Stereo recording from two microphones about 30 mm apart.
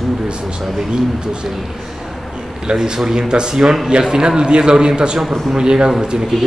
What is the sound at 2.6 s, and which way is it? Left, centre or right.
Speech, right.